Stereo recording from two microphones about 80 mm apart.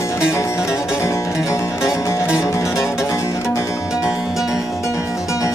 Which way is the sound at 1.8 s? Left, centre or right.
Left.